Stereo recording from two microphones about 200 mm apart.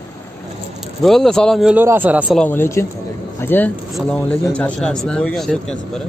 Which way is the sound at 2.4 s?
10° left (ahead or behind).